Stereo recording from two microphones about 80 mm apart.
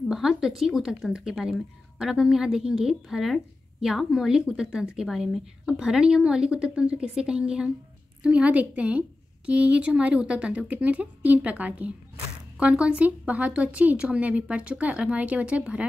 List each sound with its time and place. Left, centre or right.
0.1 s a woman's voice: centre